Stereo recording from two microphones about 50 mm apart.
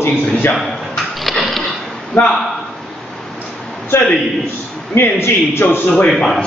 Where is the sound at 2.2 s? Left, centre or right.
Left.